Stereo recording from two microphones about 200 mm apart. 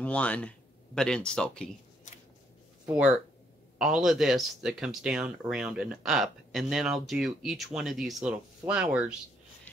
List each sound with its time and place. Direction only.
0.0 s speech: 5° left (ahead or behind)
3.7 s speech: 5° right (ahead or behind)